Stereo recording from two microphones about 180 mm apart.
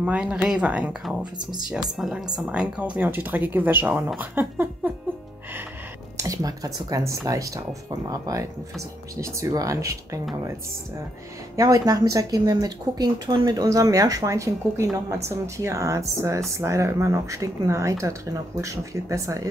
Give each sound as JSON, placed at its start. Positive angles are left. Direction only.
{"t": 0.0, "sound": "speech", "side_deg": -5}
{"t": 6.1, "sound": "speech", "side_deg": -20}
{"t": 11.5, "sound": "speech", "side_deg": -20}